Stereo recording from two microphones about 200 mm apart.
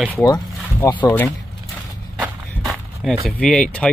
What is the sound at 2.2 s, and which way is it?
Walk, centre (ahead or behind).